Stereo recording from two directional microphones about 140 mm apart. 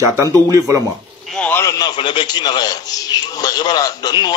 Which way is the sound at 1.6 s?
25° left (ahead or behind).